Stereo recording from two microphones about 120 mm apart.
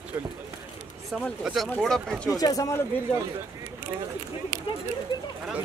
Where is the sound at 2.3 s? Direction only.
30° left (ahead or behind).